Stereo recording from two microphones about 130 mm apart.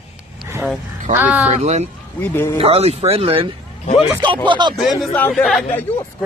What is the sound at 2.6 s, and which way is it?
Speech, 50° right (ahead or behind).